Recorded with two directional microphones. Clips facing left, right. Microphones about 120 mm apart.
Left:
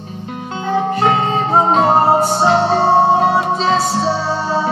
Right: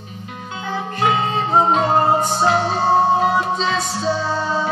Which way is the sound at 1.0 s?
35° left (ahead or behind).